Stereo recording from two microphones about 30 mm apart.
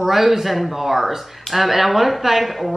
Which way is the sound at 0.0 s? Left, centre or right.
Centre.